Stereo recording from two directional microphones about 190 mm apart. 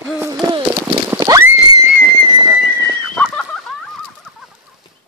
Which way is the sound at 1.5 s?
20° right (ahead or behind).